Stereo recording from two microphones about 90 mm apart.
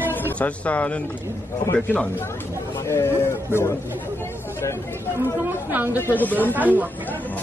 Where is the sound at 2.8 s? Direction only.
30° left (ahead or behind).